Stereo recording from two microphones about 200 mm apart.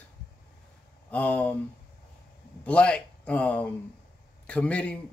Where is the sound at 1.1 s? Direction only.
10° left (ahead or behind).